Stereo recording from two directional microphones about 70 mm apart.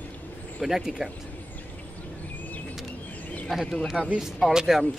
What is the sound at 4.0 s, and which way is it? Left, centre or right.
Speech, centre.